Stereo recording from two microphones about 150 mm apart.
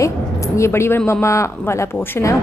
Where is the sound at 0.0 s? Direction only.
20° left (ahead or behind).